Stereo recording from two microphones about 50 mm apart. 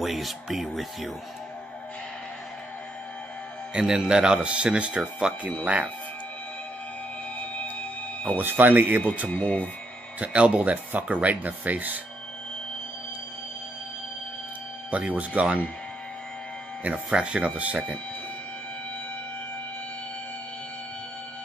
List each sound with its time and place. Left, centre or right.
0.0 s speech: centre
3.7 s speech: centre
8.4 s speech: right
9.3 s speech: left
10.2 s speech: right
14.9 s speech: right
16.8 s speech: right